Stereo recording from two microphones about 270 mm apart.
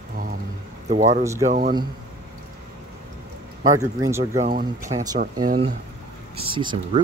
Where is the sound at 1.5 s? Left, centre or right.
Right.